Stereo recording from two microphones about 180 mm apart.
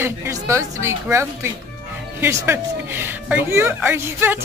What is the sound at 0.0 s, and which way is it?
Speech, 15° right (ahead or behind).